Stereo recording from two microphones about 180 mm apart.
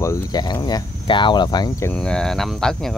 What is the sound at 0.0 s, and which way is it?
Speech, 20° left (ahead or behind).